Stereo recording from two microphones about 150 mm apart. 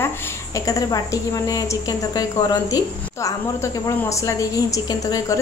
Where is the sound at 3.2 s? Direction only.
20° left (ahead or behind).